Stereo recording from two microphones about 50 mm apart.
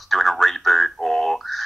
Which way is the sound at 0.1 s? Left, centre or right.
Centre.